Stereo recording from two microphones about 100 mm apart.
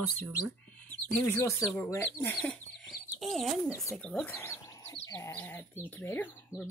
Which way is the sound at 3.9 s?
10° left (ahead or behind).